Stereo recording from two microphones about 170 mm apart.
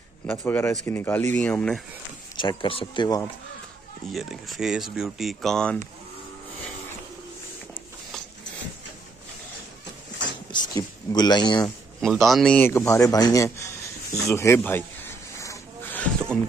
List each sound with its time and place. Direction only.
0.3 s speech: 10° left (ahead or behind)
2.3 s speech: 30° left (ahead or behind)
4.1 s speech: centre (ahead or behind)
10.5 s a sound: 25° left (ahead or behind)
12.0 s speech: centre (ahead or behind); by 13.7 s 20° left (ahead or behind)
14.3 s a sound: 15° left (ahead or behind)